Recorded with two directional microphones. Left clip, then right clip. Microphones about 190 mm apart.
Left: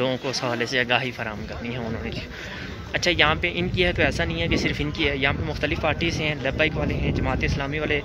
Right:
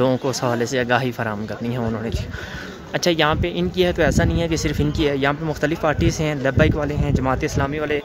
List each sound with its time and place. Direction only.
0.0 s speech: 40° right (ahead or behind)
2.9 s speech: 35° right (ahead or behind)